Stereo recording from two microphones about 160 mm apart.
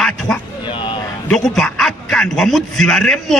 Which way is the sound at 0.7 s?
30° left (ahead or behind).